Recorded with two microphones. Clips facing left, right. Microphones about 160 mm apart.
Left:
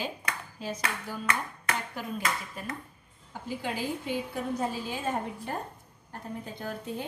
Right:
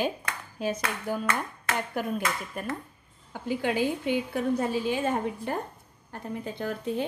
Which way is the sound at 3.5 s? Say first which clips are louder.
Right 6 dB; 70° right (ahead or behind).